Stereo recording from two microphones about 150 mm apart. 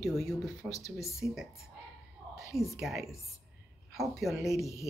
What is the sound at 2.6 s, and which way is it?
A woman's voice, centre (ahead or behind).